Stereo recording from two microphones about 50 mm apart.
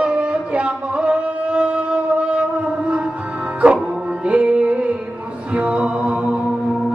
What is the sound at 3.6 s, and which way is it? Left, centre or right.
Music, right.